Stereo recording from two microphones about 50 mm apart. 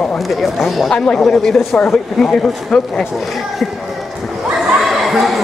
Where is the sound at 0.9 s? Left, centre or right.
Centre.